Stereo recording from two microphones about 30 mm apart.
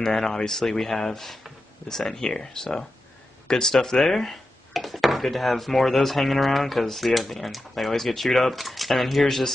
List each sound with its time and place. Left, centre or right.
0.0 s speech: centre
1.9 s speech: centre
4.7 s speech: centre